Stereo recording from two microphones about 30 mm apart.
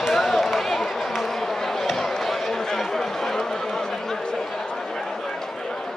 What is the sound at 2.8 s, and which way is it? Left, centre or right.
Chatter, centre.